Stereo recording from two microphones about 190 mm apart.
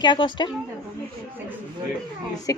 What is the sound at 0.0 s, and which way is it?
Speech, 25° left (ahead or behind).